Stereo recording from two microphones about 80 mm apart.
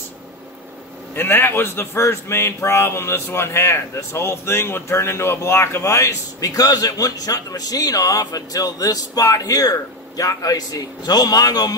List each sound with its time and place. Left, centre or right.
1.1 s a man's voice: left